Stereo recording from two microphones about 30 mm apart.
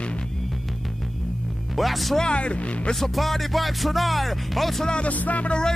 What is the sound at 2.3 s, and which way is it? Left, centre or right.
Speech, left.